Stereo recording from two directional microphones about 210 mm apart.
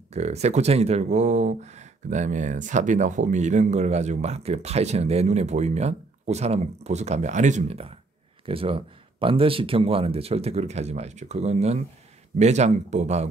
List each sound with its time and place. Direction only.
0.1 s speech: 30° right (ahead or behind)